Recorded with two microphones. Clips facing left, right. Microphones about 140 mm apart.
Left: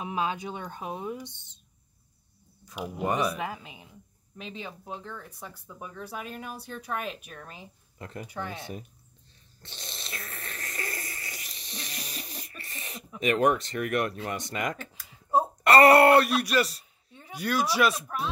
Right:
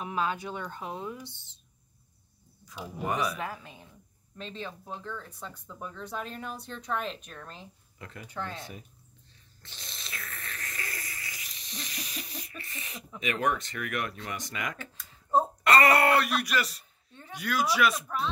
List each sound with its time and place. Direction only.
0.0 s speech: 20° left (ahead or behind)
2.7 s speech: 15° left (ahead or behind)
8.0 s speech: 35° left (ahead or behind)
8.3 s speech: 10° left (ahead or behind)
9.6 s a sound: 30° left (ahead or behind)
13.2 s speech: 40° left (ahead or behind)
15.0 s a sound: 10° left (ahead or behind)
15.7 s speech: 35° left (ahead or behind)
17.1 s speech: 15° left (ahead or behind)
17.4 s speech: 30° left (ahead or behind)
17.9 s speech: 10° left (ahead or behind)